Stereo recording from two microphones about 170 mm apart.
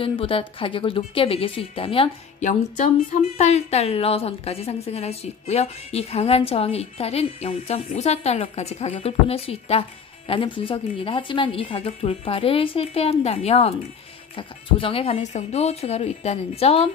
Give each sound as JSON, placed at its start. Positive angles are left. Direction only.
{"t": 0.0, "sound": "a woman's voice", "side_deg": 35}
{"t": 3.2, "sound": "a woman's voice", "side_deg": 40}